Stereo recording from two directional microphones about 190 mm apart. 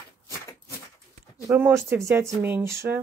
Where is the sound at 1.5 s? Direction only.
10° right (ahead or behind).